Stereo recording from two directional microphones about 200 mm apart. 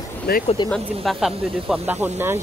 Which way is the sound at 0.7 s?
Centre (ahead or behind).